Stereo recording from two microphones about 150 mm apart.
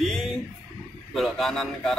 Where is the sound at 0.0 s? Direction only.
Centre (ahead or behind).